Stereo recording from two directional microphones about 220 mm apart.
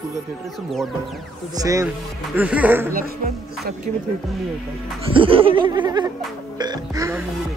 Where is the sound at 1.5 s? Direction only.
15° right (ahead or behind).